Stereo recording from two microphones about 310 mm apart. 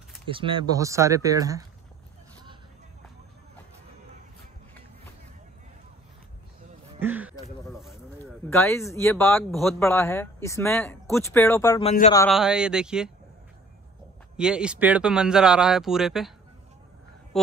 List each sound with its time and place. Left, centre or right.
0.3 s speech: centre
7.0 s a sound: centre
7.6 s speech: centre
11.8 s a man's voice: left
12.3 s speech: centre
14.3 s speech: centre